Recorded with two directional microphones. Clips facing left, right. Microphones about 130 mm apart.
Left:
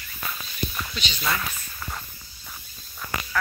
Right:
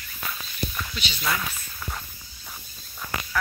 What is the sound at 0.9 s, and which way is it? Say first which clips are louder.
Speech: left 1 dB; 10° right (ahead or behind).